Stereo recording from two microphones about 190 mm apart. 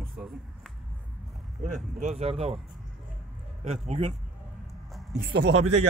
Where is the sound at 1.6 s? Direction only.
40° right (ahead or behind).